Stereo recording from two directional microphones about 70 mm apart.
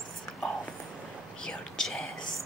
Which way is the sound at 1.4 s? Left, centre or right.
Centre.